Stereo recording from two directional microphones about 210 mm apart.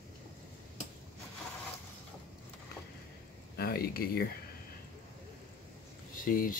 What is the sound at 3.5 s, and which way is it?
Speech, 45° left (ahead or behind).